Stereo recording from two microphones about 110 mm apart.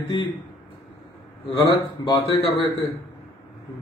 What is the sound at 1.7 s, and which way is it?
Speech, 45° left (ahead or behind).